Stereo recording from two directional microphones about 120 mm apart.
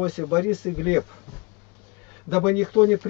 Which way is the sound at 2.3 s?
5° right (ahead or behind).